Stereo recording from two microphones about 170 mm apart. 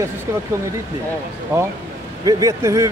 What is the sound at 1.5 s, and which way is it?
A man's voice, 15° right (ahead or behind).